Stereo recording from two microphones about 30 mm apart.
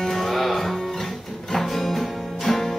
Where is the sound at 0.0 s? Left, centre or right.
Centre.